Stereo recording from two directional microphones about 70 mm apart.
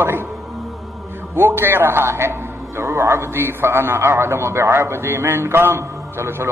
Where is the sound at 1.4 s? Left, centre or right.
Right.